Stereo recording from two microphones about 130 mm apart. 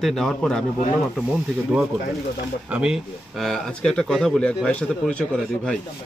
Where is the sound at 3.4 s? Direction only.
5° left (ahead or behind).